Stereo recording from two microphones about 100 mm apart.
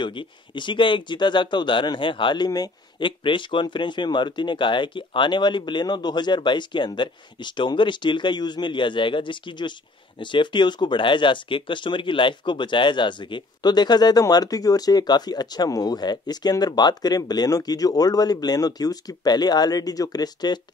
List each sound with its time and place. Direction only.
0.0 s speech: 55° left (ahead or behind)
3.1 s speech: 55° left (ahead or behind)